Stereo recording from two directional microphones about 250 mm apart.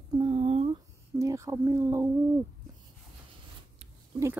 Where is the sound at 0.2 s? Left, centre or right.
Right.